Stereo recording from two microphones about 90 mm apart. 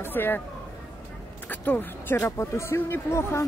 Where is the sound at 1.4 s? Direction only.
20° left (ahead or behind).